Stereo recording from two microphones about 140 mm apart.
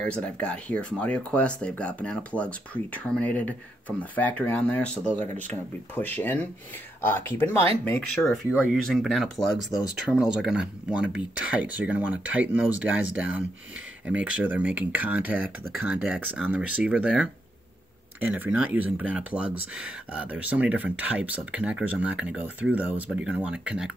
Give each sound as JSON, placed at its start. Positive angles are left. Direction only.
{"t": 0.0, "sound": "speech", "side_deg": 5}
{"t": 8.7, "sound": "speech", "side_deg": 0}